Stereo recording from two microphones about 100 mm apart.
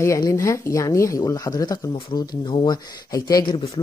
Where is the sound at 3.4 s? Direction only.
65° left (ahead or behind).